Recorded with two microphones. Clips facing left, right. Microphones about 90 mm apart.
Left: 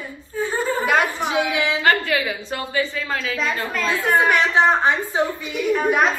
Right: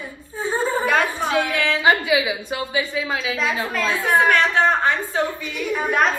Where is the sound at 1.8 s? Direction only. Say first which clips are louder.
Right 3 dB; 15° right (ahead or behind).